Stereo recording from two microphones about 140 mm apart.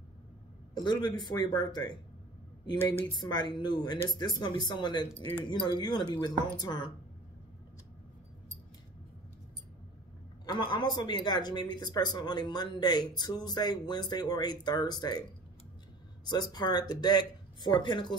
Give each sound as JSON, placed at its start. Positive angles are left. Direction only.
{"t": 0.7, "sound": "speech", "side_deg": 30}
{"t": 3.2, "sound": "speech", "side_deg": 30}
{"t": 10.4, "sound": "speech", "side_deg": 35}
{"t": 16.3, "sound": "speech", "side_deg": 30}